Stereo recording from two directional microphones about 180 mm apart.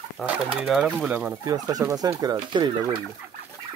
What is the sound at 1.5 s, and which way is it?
Speech, 20° right (ahead or behind).